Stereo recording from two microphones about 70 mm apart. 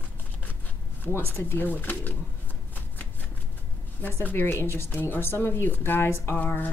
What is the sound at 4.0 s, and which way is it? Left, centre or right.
Speech, left.